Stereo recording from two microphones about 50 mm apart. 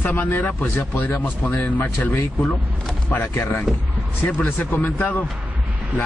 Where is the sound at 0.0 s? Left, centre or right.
Left.